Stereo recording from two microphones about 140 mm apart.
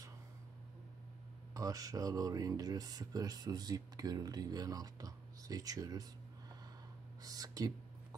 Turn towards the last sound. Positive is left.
turn(degrees=-25)  # may be behind; listen again after turning